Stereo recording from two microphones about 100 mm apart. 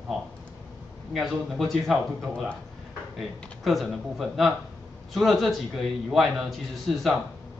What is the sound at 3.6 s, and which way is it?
A man's voice, centre (ahead or behind).